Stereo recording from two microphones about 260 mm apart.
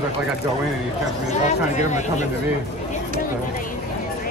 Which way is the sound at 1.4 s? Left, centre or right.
Left.